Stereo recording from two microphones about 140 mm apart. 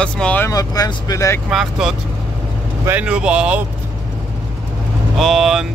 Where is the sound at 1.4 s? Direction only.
5° right (ahead or behind).